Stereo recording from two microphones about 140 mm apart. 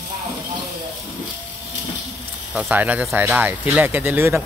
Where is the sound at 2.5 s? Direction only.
10° right (ahead or behind).